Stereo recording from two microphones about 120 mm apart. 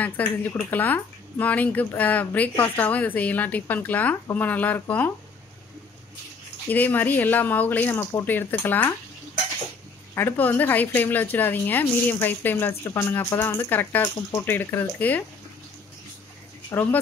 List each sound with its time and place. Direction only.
0.0 s a woman's voice: 15° left (ahead or behind)
6.7 s a woman's voice: 15° left (ahead or behind)
10.1 s a woman's voice: 15° left (ahead or behind)
16.7 s a woman's voice: 15° left (ahead or behind)